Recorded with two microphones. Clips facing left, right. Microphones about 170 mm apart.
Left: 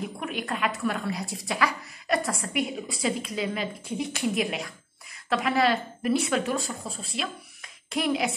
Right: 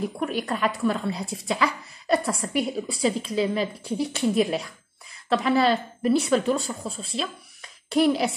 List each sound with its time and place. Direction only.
0.2 s a woman's voice: 35° right (ahead or behind)